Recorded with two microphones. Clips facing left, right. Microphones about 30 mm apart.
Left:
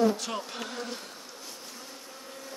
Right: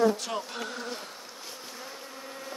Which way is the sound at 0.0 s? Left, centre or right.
Centre.